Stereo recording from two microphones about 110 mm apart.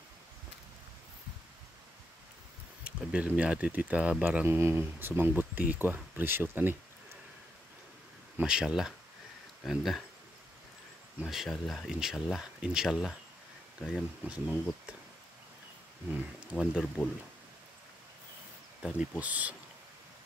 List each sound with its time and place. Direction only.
2.8 s speech: 10° right (ahead or behind)
4.5 s speech: 20° right (ahead or behind)
8.4 s speech: 5° right (ahead or behind)
11.1 s speech: 5° right (ahead or behind)
14.2 s speech: 10° right (ahead or behind)
16.5 s speech: centre (ahead or behind)
18.8 s speech: 10° right (ahead or behind)